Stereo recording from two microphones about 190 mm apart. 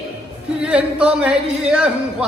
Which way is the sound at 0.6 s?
5° right (ahead or behind).